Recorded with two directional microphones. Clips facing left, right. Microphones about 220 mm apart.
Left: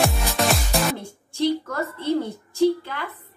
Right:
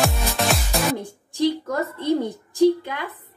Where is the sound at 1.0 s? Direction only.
15° right (ahead or behind).